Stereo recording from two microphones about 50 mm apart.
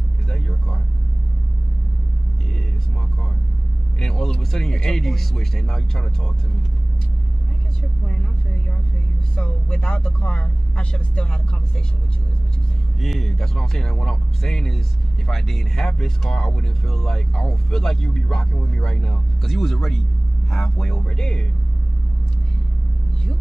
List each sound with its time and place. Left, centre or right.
0.3 s vehicle: centre
4.0 s speech: centre
8.1 s vehicle: centre
9.3 s speech: left
13.0 s speech: centre